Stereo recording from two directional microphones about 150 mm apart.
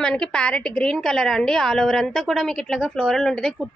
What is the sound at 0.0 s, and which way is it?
A woman's voice, 5° left (ahead or behind).